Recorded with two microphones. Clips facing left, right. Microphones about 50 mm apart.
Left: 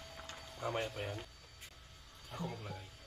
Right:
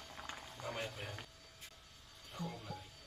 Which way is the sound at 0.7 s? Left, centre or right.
Centre.